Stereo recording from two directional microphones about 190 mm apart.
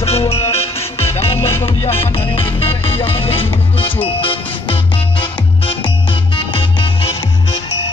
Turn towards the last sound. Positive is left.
turn(degrees=25)  # may be behind; listen again after turning